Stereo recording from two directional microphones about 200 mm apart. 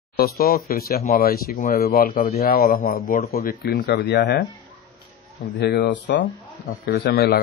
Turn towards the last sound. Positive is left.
turn(degrees=50)  # may be behind; listen again after turning